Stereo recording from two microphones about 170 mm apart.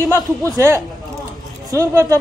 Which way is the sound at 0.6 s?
20° right (ahead or behind).